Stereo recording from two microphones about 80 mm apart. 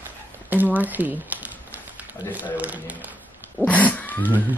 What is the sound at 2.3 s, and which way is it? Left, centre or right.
Speech, centre.